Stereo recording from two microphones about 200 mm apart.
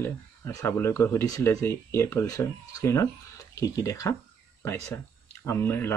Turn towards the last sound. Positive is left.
turn(degrees=10)  # may be behind; listen again after turning